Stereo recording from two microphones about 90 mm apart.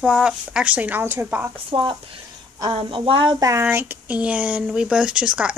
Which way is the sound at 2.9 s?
70° right (ahead or behind).